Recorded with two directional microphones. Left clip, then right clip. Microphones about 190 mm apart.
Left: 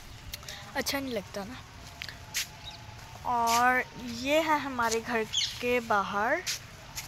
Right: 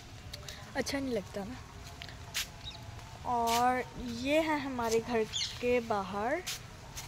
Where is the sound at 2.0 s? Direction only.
Centre (ahead or behind).